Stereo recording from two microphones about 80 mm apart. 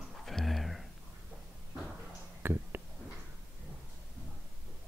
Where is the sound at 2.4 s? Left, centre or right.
Right.